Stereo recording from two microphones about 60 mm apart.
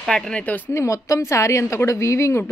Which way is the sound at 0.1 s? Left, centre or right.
Centre.